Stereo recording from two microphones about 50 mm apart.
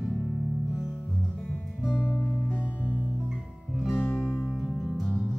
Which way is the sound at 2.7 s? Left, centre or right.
Left.